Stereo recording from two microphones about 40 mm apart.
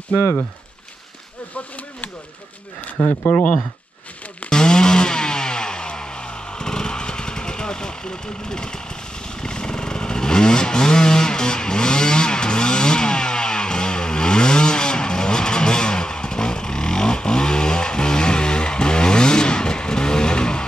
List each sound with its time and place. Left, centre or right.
3.0 s speech: left
3.3 s speech: left
4.5 s chainsaw: centre